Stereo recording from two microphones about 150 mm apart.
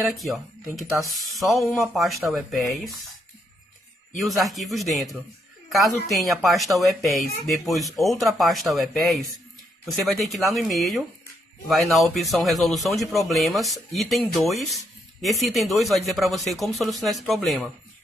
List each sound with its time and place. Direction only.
0.1 s speech: centre (ahead or behind)
4.1 s speech: centre (ahead or behind)